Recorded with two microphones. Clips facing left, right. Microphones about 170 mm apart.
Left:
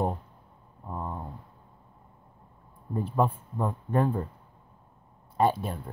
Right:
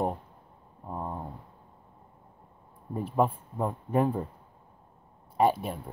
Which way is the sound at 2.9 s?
5° right (ahead or behind).